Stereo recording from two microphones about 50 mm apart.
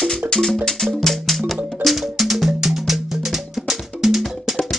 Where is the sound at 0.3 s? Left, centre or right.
Centre.